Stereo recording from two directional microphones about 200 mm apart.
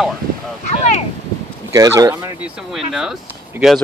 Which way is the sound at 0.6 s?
35° left (ahead or behind).